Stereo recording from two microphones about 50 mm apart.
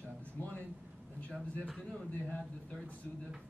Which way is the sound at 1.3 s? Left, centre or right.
Centre.